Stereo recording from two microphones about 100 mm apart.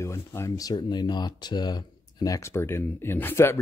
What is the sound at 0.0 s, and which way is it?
Speech, 25° left (ahead or behind).